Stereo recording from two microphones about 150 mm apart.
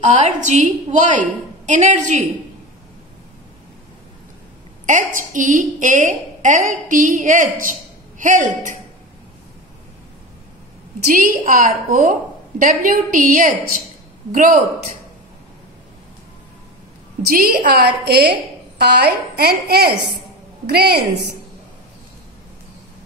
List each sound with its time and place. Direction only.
0.0 s a woman's voice: 50° right (ahead or behind)
4.8 s a woman's voice: 60° right (ahead or behind)
11.1 s a woman's voice: 65° right (ahead or behind)
17.3 s a woman's voice: 80° right